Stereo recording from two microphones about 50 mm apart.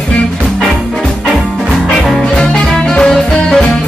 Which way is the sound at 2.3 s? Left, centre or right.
Centre.